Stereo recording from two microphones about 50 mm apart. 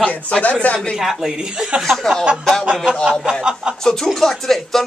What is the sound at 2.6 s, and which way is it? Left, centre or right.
Speech, centre.